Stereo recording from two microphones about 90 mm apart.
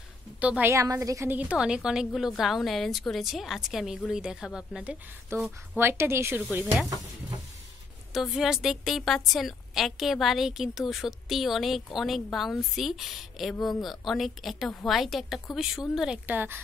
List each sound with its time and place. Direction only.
0.4 s a woman's voice: 15° right (ahead or behind)
0.7 s a woman's voice: 35° right (ahead or behind)
1.3 s a woman's voice: 15° right (ahead or behind)
5.3 s speech: 25° right (ahead or behind)
8.1 s a woman's voice: 5° right (ahead or behind)
16.3 s speech: 20° right (ahead or behind)